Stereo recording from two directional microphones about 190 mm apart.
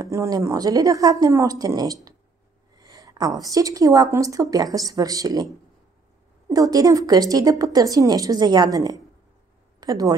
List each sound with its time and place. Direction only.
0.0 s a woman's voice: 15° right (ahead or behind)
6.5 s speech: 20° right (ahead or behind)